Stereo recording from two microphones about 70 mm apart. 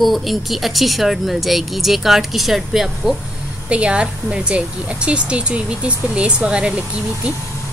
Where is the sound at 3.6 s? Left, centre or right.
Centre.